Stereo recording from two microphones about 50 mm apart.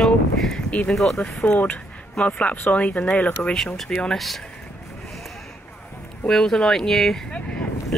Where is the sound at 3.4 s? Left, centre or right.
Left.